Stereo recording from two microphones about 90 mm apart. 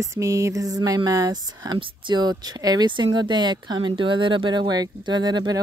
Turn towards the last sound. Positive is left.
turn(degrees=-55)  # may be behind; listen again after turning